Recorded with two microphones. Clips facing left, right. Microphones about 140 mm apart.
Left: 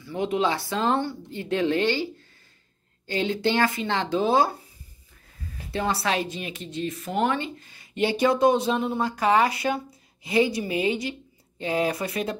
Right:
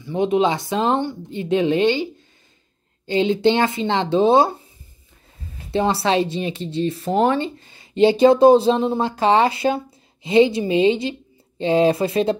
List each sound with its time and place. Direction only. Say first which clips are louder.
0.0 s speech: right 6 dB; 20° right (ahead or behind)
3.1 s speech: right 7 dB; 20° right (ahead or behind)
5.7 s speech: right 7 dB; 25° right (ahead or behind)